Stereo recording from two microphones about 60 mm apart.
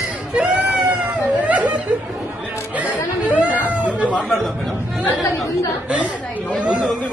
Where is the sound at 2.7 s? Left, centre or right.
Right.